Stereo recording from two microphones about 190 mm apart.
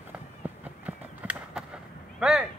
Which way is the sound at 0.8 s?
5° right (ahead or behind).